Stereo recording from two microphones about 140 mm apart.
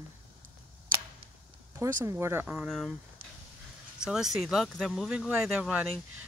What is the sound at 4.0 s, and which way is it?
Speech, 5° right (ahead or behind).